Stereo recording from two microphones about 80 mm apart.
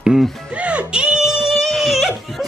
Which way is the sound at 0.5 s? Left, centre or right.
Centre.